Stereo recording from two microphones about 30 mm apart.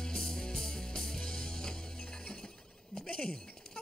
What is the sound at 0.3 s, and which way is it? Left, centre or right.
Music, centre.